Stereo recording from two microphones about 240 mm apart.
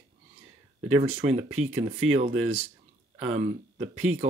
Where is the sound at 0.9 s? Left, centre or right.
Right.